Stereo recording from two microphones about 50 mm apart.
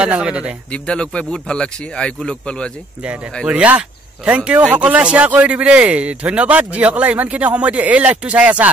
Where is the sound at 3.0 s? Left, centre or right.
Right.